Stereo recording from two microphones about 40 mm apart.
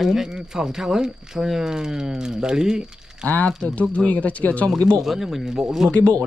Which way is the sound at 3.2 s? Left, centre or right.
Left.